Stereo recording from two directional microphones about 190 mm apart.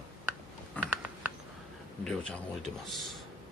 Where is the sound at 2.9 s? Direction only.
Centre (ahead or behind).